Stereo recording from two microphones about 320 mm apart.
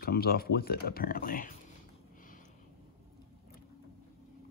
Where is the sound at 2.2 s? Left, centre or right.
Left.